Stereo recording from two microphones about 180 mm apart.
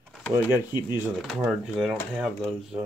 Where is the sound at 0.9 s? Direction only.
Centre (ahead or behind).